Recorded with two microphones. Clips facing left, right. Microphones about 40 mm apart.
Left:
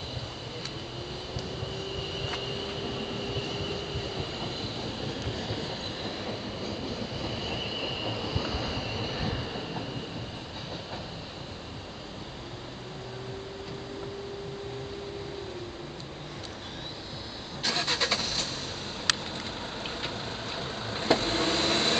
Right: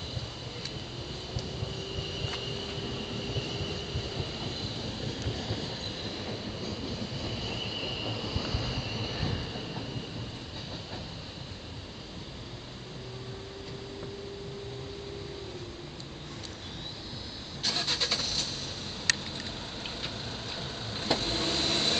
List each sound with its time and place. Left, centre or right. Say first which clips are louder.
2.0 s train: left 2 dB; centre
17.6 s vehicle: left 3 dB; left
20.5 s vehicle: left 4 dB; centre